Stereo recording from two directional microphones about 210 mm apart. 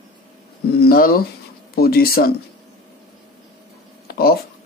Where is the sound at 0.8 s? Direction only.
45° left (ahead or behind).